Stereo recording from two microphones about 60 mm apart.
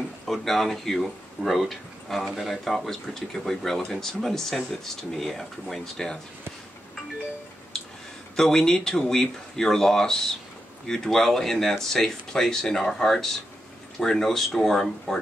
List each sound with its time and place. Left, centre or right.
0.3 s speech: centre
7.7 s a sound: centre
8.4 s speech: centre